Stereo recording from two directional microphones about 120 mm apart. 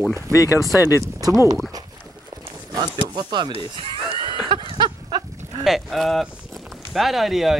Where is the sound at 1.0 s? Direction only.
30° right (ahead or behind).